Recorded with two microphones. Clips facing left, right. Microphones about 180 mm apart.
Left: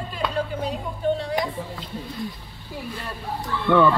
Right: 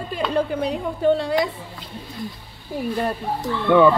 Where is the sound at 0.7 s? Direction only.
70° right (ahead or behind).